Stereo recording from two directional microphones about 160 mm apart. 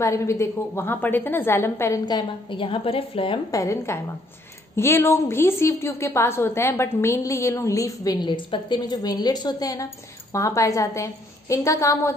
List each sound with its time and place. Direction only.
0.0 s a woman's voice: 20° left (ahead or behind); by 3.3 s 35° left (ahead or behind)
3.5 s a woman's voice: 20° left (ahead or behind)